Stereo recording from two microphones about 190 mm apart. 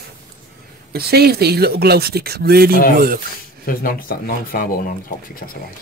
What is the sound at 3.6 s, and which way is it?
Speech, 50° left (ahead or behind).